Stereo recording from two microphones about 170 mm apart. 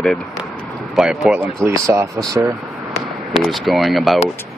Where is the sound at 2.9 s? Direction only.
Centre (ahead or behind).